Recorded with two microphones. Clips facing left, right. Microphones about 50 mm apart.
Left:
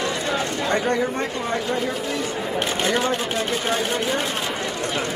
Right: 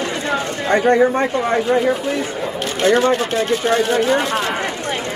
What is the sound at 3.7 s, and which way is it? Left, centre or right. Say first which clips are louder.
Speech: right 8 dB; right.